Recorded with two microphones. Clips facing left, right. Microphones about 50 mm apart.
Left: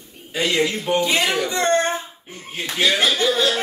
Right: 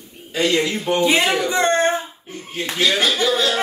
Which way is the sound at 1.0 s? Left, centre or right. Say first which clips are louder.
Right 3 dB; right.